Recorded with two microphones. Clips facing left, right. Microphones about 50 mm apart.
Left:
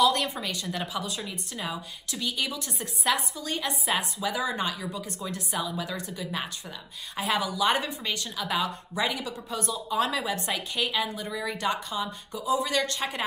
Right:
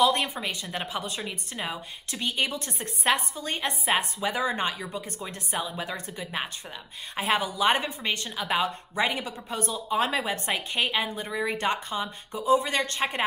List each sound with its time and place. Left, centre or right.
0.0 s a woman's voice: right